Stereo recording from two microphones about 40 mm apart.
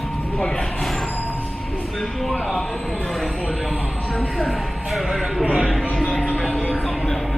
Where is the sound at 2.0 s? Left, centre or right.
Centre.